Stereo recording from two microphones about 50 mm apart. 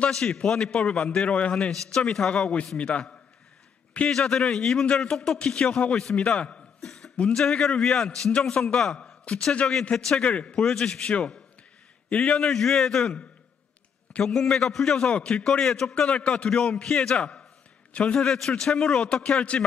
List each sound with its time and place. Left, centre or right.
0.3 s a man's voice: centre
1.7 s a man's voice: centre
4.1 s a man's voice: centre
5.4 s a man's voice: left
6.8 s a sound: centre
7.2 s a man's voice: centre
10.2 s a man's voice: left
10.5 s a man's voice: centre
11.0 s a man's voice: left
14.2 s a man's voice: centre
15.9 s a man's voice: left
18.6 s a man's voice: centre
19.2 s a man's voice: left